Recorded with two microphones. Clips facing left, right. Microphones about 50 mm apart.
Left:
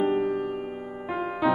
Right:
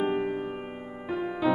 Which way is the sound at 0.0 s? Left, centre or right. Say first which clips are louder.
Left 3 dB; centre.